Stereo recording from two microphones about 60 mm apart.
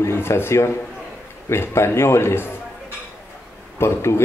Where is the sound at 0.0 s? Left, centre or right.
Left.